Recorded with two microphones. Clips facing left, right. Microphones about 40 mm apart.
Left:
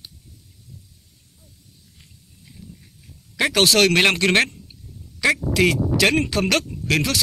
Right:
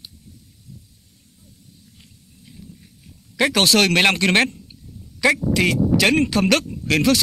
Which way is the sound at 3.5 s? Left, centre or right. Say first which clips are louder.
Left 1 dB; right.